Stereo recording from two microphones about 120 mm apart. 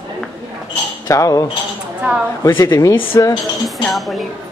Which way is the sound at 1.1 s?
30° left (ahead or behind).